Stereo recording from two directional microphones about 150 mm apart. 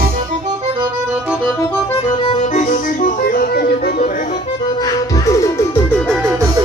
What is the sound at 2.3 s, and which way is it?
Music, 45° left (ahead or behind).